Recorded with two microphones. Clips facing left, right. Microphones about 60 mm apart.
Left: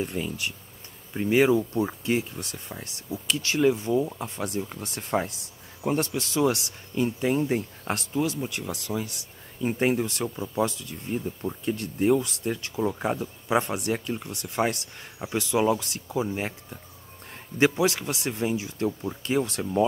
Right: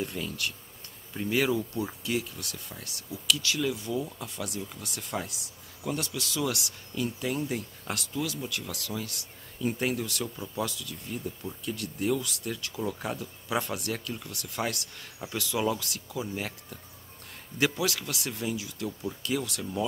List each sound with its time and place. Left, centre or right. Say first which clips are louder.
0.0 s speech: left 3 dB; left